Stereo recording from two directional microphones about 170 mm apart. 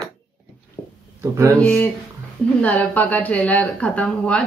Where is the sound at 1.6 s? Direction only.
5° left (ahead or behind).